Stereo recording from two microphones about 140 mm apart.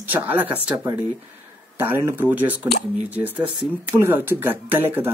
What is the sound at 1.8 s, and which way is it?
Speech, 15° right (ahead or behind).